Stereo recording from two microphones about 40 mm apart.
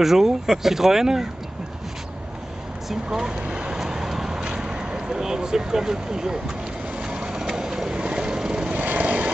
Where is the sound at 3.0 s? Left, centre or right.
Centre.